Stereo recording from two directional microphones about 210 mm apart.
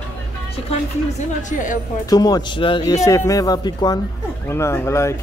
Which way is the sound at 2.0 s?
15° left (ahead or behind).